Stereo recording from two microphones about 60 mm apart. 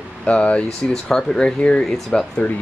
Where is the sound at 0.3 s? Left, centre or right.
Centre.